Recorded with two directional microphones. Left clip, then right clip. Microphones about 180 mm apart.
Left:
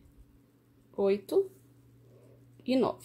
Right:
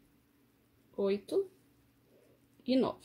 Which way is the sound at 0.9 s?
15° left (ahead or behind).